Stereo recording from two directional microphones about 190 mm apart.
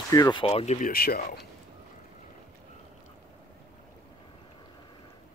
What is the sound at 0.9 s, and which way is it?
Speech, 55° left (ahead or behind).